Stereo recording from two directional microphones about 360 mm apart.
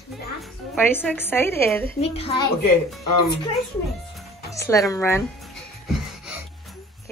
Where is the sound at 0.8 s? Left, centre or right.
Centre.